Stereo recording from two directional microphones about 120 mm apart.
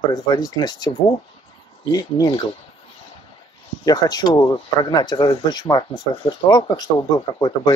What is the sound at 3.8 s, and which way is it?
Speech, 35° left (ahead or behind).